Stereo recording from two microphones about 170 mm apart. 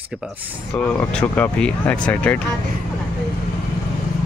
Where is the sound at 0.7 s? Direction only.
5° left (ahead or behind).